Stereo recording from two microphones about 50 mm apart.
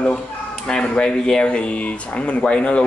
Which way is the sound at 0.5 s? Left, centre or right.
Centre.